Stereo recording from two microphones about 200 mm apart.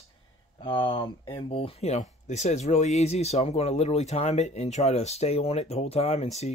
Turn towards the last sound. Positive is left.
turn(degrees=30)  # may be behind; listen again after turning